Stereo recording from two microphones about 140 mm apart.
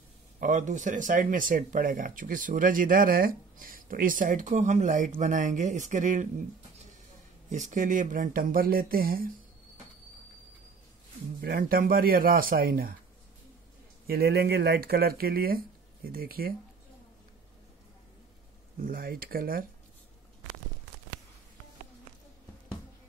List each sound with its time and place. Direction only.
0.4 s speech: 65° right (ahead or behind)
7.4 s speech: 65° right (ahead or behind); by 9.3 s 90° right
11.5 s speech: 85° right
14.0 s a man's voice: 90° right
18.8 s speech: 90° right